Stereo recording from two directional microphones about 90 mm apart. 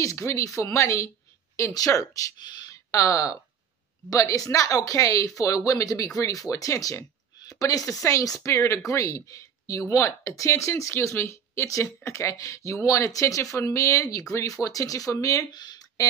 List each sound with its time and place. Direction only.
0.0 s speech: 35° left (ahead or behind)
2.3 s speech: 55° left (ahead or behind)
2.7 s speech: 40° left (ahead or behind)
15.5 s a sound: 50° left (ahead or behind)